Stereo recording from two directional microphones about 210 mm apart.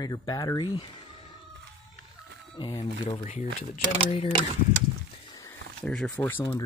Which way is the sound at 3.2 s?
35° left (ahead or behind).